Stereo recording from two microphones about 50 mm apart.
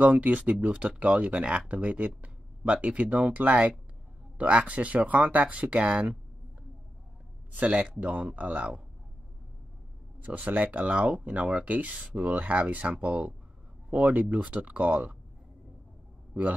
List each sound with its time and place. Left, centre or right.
0.0 s speech: right
7.5 s speech: right
10.2 s speech: right